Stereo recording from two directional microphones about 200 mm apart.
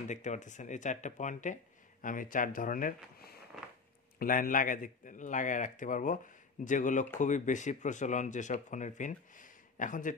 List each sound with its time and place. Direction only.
0.1 s speech: 35° left (ahead or behind)